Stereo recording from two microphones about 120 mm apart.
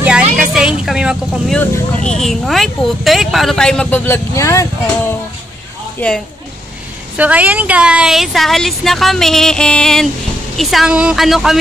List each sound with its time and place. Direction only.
0.0 s vehicle: 10° right (ahead or behind)
1.5 s speech: 5° left (ahead or behind)
4.0 s speech: 20° left (ahead or behind)
5.9 s speech: 10° left (ahead or behind)
7.2 s speech: 10° right (ahead or behind)